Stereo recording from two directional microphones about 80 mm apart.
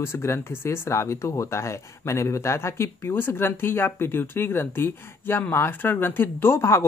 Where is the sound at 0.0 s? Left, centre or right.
Left.